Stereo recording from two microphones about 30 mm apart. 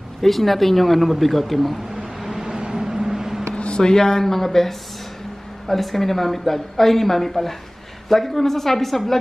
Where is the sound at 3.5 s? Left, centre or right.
Left.